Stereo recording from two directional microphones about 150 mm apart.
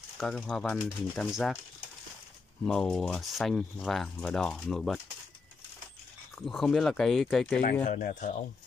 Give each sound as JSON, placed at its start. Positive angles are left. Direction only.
{"t": 0.2, "sound": "speech", "side_deg": 5}
{"t": 2.6, "sound": "speech", "side_deg": 5}
{"t": 6.3, "sound": "speech", "side_deg": 0}
{"t": 7.8, "sound": "speech", "side_deg": 60}